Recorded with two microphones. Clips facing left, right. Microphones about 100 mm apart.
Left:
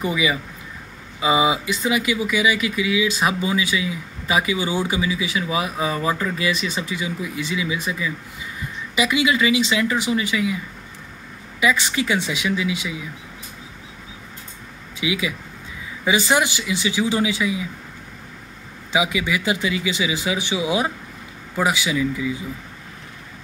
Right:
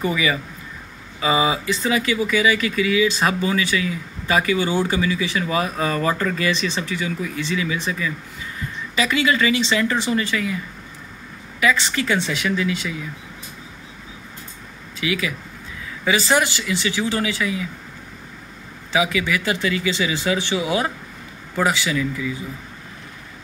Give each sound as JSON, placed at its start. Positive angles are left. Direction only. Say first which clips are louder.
{"t": 0.0, "sound": "speech", "louder": "even", "side_deg": 15}
{"t": 11.6, "sound": "speech", "louder": "even", "side_deg": 15}
{"t": 15.0, "sound": "speech", "louder": "even", "side_deg": 20}
{"t": 18.9, "sound": "speech", "louder": "right 1 dB", "side_deg": 15}